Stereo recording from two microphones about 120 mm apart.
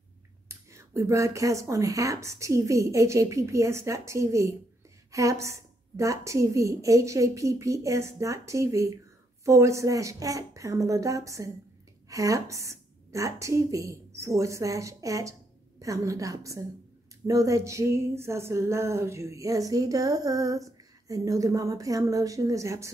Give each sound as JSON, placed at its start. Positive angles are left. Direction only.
{"t": 0.5, "sound": "a woman's voice", "side_deg": -25}